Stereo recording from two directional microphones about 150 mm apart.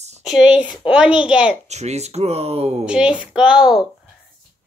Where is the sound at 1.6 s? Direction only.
50° right (ahead or behind).